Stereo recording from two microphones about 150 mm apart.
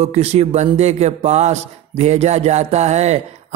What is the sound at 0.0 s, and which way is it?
Speech, 45° right (ahead or behind).